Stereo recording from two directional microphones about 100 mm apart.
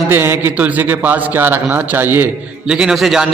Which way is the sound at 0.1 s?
20° right (ahead or behind).